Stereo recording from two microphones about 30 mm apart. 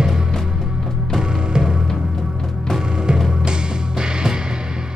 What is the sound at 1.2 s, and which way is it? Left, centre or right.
Music, right.